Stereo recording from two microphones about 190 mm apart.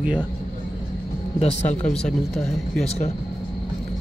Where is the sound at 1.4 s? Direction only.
35° left (ahead or behind).